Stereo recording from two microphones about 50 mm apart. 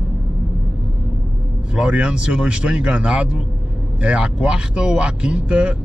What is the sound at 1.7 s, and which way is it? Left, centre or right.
Speech, right.